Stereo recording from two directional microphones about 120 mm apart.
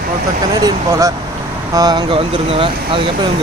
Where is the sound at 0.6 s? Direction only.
25° right (ahead or behind).